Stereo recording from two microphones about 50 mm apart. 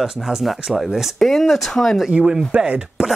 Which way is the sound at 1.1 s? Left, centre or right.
Centre.